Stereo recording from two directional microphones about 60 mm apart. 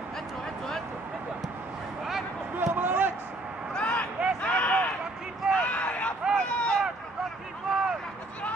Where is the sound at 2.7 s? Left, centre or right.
Right.